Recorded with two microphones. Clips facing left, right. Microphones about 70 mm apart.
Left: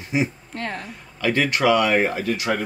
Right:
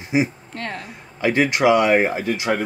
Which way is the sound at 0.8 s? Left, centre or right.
Centre.